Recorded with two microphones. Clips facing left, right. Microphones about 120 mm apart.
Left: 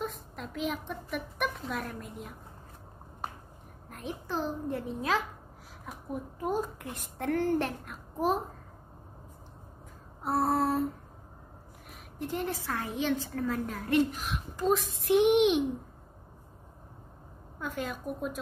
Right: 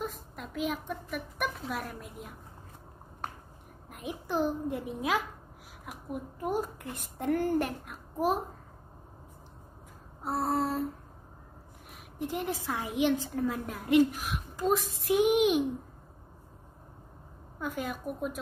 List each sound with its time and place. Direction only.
0.0 s a woman's voice: centre (ahead or behind)
3.9 s a woman's voice: 10° right (ahead or behind)
6.4 s a woman's voice: 10° right (ahead or behind)
10.2 s a sound: centre (ahead or behind)
12.2 s a woman's voice: 10° right (ahead or behind)
14.8 s child singing: 55° left (ahead or behind)
15.0 s a sound: 5° right (ahead or behind)
17.6 s a woman's voice: 10° right (ahead or behind)